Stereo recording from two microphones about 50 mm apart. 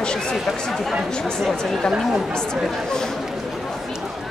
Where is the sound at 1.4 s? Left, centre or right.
Centre.